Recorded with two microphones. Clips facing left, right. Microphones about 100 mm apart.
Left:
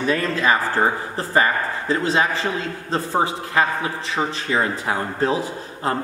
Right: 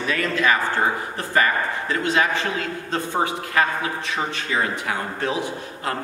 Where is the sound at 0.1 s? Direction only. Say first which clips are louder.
Left 1 dB; 30° left (ahead or behind).